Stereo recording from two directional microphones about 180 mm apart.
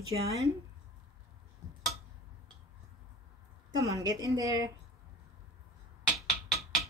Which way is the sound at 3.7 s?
20° right (ahead or behind).